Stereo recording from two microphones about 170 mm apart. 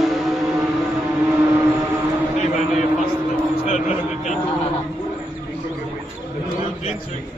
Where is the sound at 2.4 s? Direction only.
40° left (ahead or behind).